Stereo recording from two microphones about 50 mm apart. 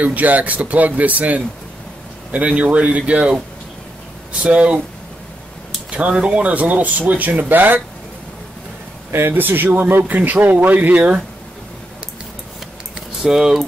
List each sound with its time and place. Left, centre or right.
0.0 s speech: right
5.9 s speech: right
9.3 s speech: right
13.2 s speech: centre